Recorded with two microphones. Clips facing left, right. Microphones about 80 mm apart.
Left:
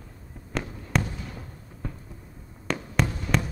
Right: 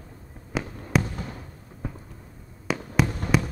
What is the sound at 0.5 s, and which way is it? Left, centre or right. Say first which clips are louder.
Fireworks: right 2 dB; centre.